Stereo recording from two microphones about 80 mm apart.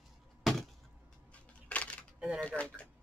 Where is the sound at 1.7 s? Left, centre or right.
Centre.